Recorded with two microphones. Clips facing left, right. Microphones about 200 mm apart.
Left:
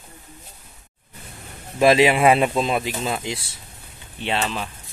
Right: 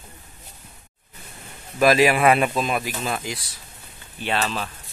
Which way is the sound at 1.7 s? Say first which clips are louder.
Left 2 dB; 25° left (ahead or behind).